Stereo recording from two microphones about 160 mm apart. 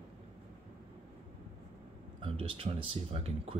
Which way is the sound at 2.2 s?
35° right (ahead or behind).